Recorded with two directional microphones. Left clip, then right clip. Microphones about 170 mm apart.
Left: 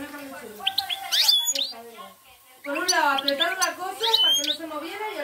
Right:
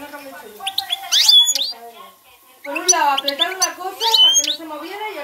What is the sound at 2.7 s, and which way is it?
Speech, 20° left (ahead or behind).